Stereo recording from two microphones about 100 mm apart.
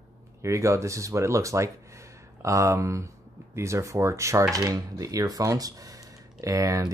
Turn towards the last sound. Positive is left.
turn(degrees=-35)  # may be behind; listen again after turning